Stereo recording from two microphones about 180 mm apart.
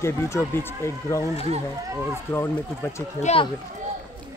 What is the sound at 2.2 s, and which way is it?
Speech, 10° left (ahead or behind).